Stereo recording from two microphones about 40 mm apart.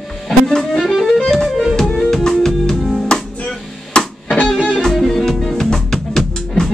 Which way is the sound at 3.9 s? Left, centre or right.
Left.